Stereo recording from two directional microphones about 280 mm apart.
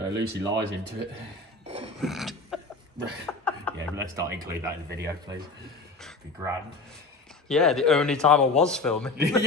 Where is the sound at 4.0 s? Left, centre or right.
Centre.